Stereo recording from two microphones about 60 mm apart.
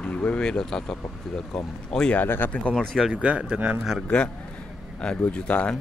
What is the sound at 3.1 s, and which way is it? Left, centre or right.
Speech, centre.